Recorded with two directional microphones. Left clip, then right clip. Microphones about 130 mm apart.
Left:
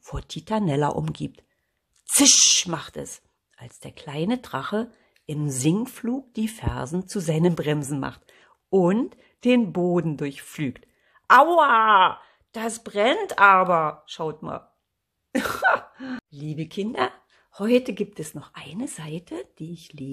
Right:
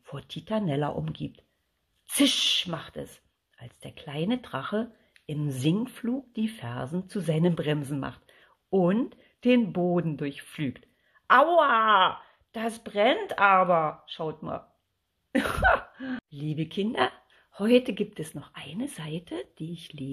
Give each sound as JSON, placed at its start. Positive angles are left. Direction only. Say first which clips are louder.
{"t": 0.0, "sound": "speech", "louder": "left 4 dB", "side_deg": 35}
{"t": 15.3, "sound": "throat clearing", "louder": "left 2 dB", "side_deg": 20}
{"t": 16.3, "sound": "speech", "louder": "even", "side_deg": 5}